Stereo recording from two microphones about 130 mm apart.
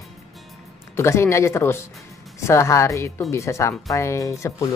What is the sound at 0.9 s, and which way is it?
Speech, 20° left (ahead or behind).